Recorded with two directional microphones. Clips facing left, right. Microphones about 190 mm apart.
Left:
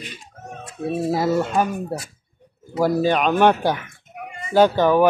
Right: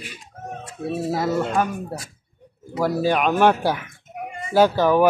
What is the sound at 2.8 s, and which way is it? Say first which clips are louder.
Mantra: left 2 dB; 5° right (ahead or behind).